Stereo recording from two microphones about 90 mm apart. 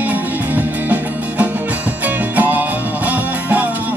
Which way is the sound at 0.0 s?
20° right (ahead or behind).